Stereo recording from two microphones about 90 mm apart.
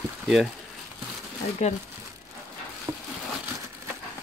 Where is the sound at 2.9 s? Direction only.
60° right (ahead or behind).